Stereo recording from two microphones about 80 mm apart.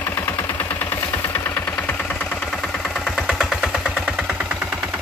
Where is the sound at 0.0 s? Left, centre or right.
Left.